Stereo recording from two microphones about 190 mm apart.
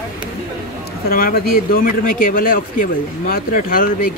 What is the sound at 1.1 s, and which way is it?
A man's voice, 50° left (ahead or behind).